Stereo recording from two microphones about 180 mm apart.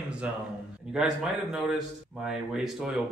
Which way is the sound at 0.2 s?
5° right (ahead or behind).